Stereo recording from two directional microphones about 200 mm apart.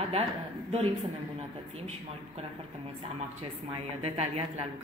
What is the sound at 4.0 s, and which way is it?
Speech, 30° right (ahead or behind).